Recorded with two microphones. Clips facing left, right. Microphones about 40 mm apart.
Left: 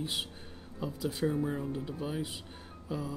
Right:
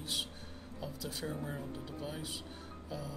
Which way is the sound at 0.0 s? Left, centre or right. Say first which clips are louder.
Left 3 dB; centre.